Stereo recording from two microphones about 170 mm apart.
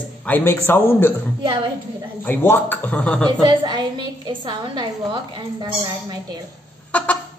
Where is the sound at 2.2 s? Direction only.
10° left (ahead or behind).